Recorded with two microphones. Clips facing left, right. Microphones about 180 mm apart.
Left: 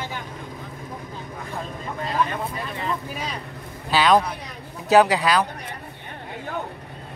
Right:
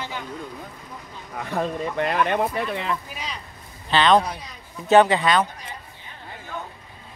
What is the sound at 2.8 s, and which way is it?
Speech, 45° left (ahead or behind).